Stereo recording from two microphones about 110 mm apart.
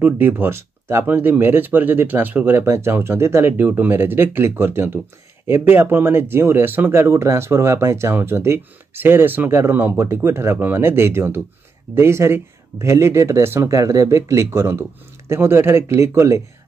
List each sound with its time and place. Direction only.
0.0 s speech: 15° right (ahead or behind)